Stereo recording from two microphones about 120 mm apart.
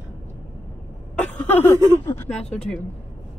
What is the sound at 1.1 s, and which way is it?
Speech, 10° left (ahead or behind).